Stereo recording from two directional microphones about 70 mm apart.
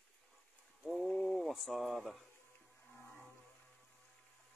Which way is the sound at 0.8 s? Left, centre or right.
Centre.